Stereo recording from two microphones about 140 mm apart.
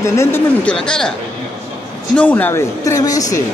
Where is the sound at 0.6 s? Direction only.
5° left (ahead or behind).